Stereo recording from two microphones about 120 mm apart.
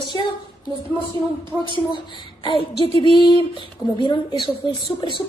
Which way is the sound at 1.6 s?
40° left (ahead or behind).